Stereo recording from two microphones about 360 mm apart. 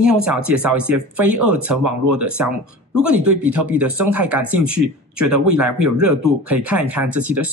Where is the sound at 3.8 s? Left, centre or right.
Right.